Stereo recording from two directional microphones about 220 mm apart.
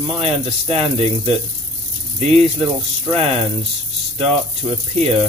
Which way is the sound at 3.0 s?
25° right (ahead or behind).